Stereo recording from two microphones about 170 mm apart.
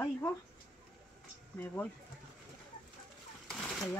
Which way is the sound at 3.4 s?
5° left (ahead or behind).